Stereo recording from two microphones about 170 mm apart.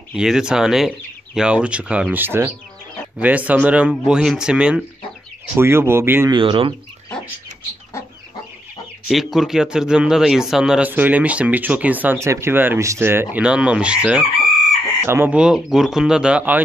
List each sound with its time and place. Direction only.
0.1 s a man's voice: 5° right (ahead or behind)
6.3 s speech: 30° right (ahead or behind)
9.1 s a man's voice: centre (ahead or behind)